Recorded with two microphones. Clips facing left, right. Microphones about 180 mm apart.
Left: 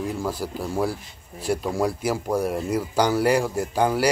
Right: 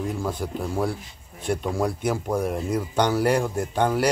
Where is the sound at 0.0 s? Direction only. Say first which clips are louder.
Left 1 dB; 5° left (ahead or behind).